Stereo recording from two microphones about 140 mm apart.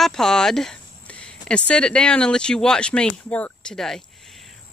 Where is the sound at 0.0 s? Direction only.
5° left (ahead or behind).